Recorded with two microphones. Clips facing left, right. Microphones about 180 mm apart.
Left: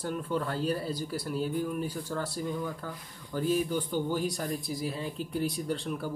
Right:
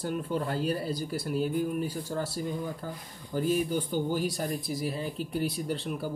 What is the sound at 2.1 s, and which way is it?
Speech, 25° right (ahead or behind).